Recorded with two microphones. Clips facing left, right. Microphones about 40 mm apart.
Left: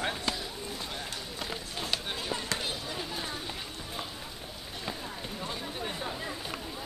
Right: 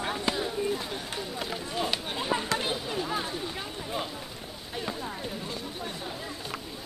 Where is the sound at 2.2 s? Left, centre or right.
Right.